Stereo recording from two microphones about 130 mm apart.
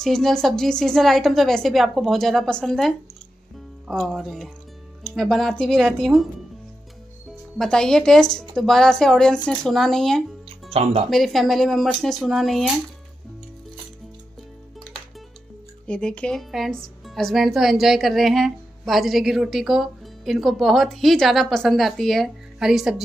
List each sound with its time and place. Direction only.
0.0 s a woman's voice: 5° left (ahead or behind)
7.5 s a woman's voice: 5° left (ahead or behind)
10.7 s speech: 50° right (ahead or behind)
11.1 s a woman's voice: centre (ahead or behind)
15.9 s a woman's voice: 10° left (ahead or behind)